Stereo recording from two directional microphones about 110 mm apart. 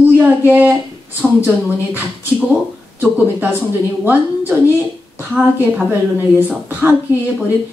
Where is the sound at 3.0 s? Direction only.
15° right (ahead or behind).